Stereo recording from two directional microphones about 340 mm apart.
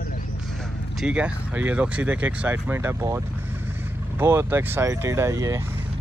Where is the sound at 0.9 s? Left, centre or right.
Centre.